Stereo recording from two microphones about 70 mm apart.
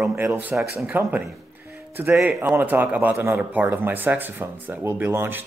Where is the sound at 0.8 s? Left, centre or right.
Right.